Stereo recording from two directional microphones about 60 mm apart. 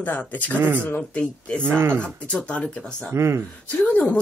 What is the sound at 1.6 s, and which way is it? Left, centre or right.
Speech, right.